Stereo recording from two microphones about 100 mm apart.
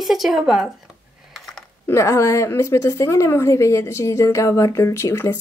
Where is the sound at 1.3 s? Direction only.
5° left (ahead or behind).